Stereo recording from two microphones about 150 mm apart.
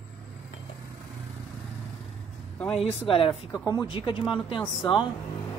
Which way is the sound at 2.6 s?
5° left (ahead or behind).